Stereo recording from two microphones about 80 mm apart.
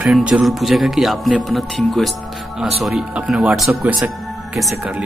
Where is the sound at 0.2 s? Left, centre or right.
Centre.